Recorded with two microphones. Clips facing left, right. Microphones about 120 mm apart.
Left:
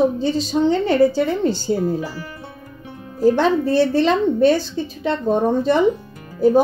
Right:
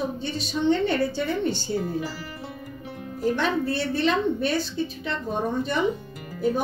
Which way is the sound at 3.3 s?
90° left.